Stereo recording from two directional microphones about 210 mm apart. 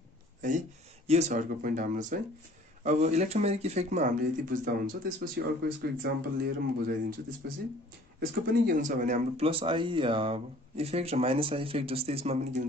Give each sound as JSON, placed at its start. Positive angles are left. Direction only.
{"t": 0.4, "sound": "speech", "side_deg": -35}